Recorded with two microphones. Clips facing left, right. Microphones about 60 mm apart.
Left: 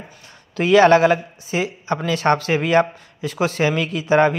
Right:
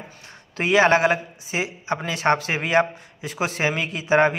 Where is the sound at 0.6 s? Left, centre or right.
Right.